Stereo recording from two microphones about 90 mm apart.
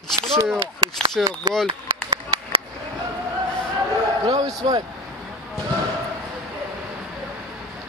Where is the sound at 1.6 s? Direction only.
65° right (ahead or behind).